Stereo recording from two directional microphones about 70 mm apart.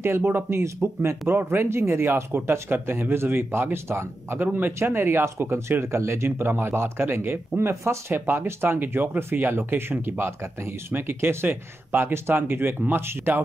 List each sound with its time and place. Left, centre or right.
0.0 s speech: right